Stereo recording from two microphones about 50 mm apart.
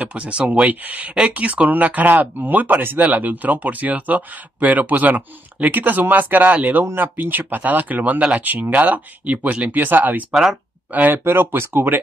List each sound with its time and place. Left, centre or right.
0.2 s speech: right
8.2 s speech: right
8.5 s speech: right
10.3 s speech: centre
11.1 s speech: right